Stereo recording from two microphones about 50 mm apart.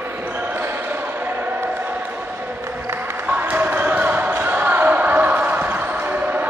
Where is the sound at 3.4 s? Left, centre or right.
Right.